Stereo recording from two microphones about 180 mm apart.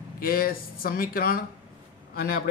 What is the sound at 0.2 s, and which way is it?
Speech, 55° left (ahead or behind).